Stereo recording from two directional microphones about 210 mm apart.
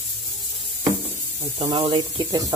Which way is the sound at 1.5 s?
25° right (ahead or behind).